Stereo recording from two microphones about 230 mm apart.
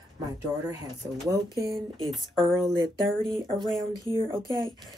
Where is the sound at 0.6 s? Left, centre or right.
Centre.